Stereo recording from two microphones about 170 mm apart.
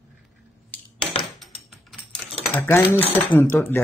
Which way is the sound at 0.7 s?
10° left (ahead or behind).